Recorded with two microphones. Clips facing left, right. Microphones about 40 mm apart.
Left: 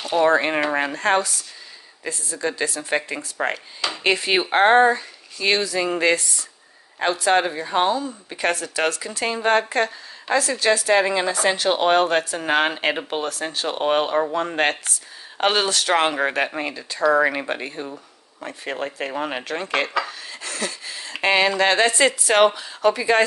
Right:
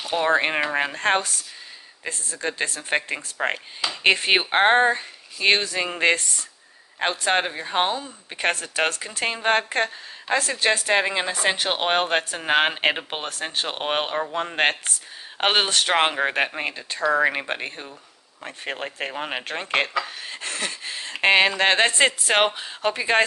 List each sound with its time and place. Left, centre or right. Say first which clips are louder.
0.0 s a sound: left 5 dB; centre
0.3 s speech: left 2 dB; right
13.7 s speech: left 7 dB; right
19.5 s speech: even; right